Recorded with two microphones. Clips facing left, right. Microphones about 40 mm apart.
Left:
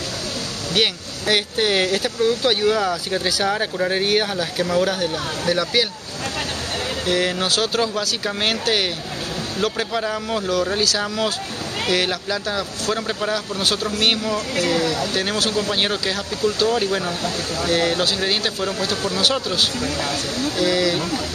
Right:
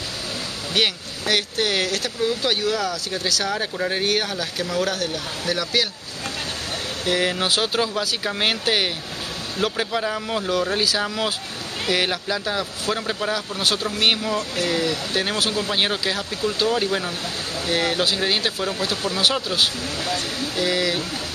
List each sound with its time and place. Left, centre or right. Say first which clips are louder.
0.7 s speech: left 1 dB; centre
7.1 s a man's voice: even; centre